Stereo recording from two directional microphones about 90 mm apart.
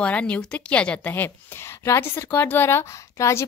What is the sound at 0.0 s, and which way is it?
A woman's voice, 15° left (ahead or behind).